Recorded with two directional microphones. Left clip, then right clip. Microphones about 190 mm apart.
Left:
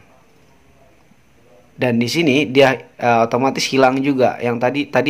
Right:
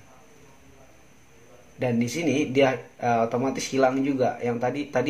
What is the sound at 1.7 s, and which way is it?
Speech, 40° left (ahead or behind).